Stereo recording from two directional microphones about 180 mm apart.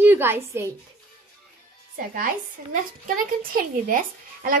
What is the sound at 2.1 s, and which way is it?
A child's voice, 50° right (ahead or behind).